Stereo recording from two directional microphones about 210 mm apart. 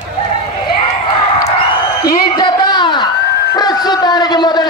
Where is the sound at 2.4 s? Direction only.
20° left (ahead or behind).